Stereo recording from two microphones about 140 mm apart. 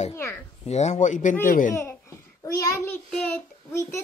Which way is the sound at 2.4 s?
20° left (ahead or behind).